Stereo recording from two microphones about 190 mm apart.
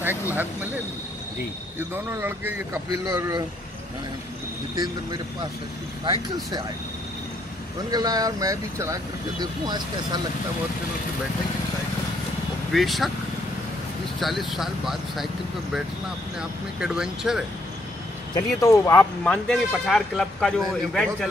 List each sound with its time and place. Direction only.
0.3 s speech: 10° right (ahead or behind)
1.8 s speech: 10° right (ahead or behind)
7.9 s speech: 20° right (ahead or behind)
12.7 s speech: centre (ahead or behind)
14.2 s speech: centre (ahead or behind)
16.3 s speech: 5° right (ahead or behind)
18.3 s speech: 15° left (ahead or behind)